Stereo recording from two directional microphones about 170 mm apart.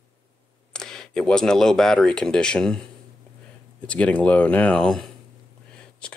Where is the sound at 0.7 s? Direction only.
5° left (ahead or behind).